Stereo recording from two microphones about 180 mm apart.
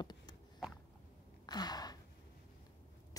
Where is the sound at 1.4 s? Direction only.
20° left (ahead or behind).